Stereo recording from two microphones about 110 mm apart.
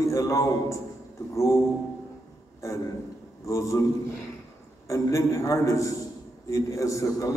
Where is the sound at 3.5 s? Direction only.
30° left (ahead or behind).